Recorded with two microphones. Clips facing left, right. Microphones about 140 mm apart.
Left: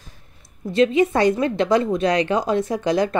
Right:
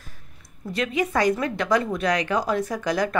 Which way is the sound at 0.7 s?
25° left (ahead or behind).